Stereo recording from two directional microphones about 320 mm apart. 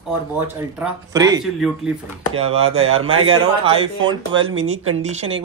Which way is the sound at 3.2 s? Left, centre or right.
Centre.